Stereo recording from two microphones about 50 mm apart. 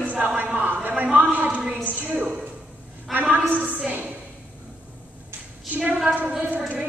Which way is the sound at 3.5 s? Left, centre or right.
Right.